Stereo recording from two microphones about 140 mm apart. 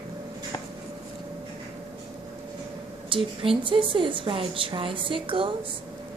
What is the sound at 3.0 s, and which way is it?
A woman's voice, 40° right (ahead or behind).